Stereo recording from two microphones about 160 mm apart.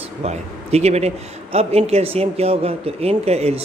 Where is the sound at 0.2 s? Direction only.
40° right (ahead or behind).